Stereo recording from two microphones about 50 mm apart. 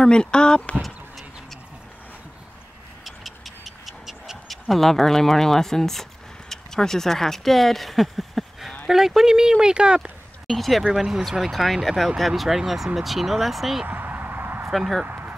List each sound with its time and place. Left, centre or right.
0.0 s speech: centre
0.8 s chicken: centre
3.1 s a sound: centre
6.5 s speech: centre
10.4 s speech: centre
10.9 s speech: centre
11.5 s speech: centre
13.8 s a sound: right
14.7 s speech: centre
15.0 s a sound: right